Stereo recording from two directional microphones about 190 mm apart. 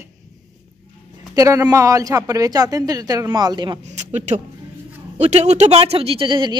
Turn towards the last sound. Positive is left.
turn(degrees=-25)  # may be behind; listen again after turning